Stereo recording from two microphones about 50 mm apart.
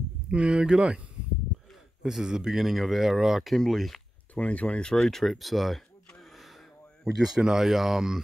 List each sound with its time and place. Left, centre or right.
0.3 s speech: right
2.0 s speech: centre
3.5 s speech: centre
4.4 s speech: left
4.9 s speech: centre
7.2 s speech: centre